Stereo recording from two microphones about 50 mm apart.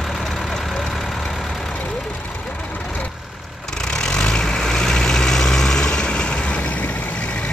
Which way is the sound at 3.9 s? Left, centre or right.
Centre.